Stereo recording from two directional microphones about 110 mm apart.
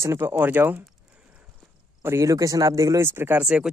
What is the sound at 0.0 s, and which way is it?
Speech, 25° right (ahead or behind).